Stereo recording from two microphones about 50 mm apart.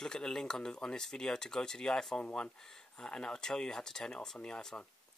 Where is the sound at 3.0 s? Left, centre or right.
Centre.